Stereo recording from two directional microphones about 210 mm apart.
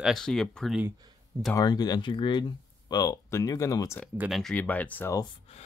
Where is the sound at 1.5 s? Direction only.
20° left (ahead or behind).